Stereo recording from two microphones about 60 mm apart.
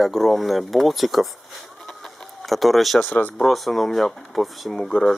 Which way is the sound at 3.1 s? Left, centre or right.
Left.